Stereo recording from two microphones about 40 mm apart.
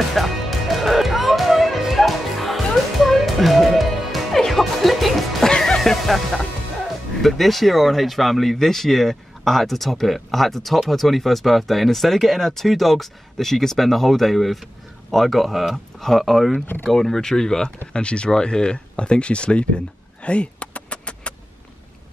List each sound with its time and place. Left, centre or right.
0.1 s music: centre
5.5 s music: centre
5.8 s music: centre
7.2 s speech: centre
17.9 s speech: left
20.2 s vehicle: left